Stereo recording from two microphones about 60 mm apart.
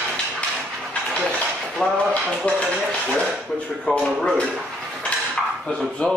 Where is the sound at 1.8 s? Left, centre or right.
Centre.